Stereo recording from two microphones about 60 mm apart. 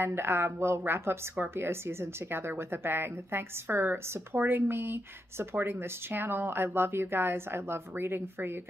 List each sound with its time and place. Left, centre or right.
0.0 s speech: right